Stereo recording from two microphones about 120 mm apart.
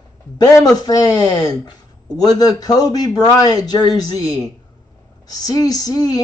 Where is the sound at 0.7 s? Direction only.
30° left (ahead or behind).